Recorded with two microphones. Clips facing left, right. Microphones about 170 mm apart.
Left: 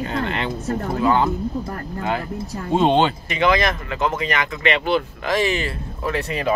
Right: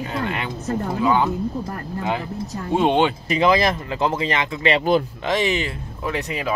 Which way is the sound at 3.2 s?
35° right (ahead or behind).